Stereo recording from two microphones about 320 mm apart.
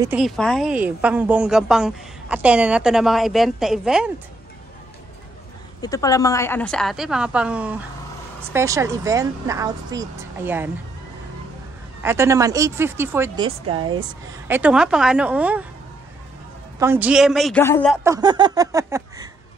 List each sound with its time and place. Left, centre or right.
0.0 s a woman's voice: centre
5.8 s a woman's voice: centre
12.0 s a woman's voice: centre
14.5 s a woman's voice: centre
16.8 s a woman's voice: centre
18.0 s a woman's voice: centre